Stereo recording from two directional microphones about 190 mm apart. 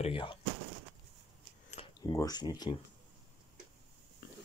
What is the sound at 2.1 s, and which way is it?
Speech, 20° left (ahead or behind).